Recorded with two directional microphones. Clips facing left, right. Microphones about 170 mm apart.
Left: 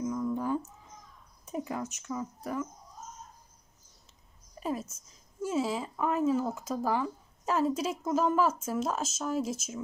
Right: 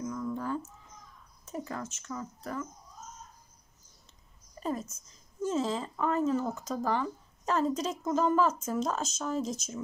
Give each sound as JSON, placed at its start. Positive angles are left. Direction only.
{"t": 0.0, "sound": "a sound", "side_deg": 15}
{"t": 1.4, "sound": "speech", "side_deg": 15}
{"t": 4.6, "sound": "speech", "side_deg": 5}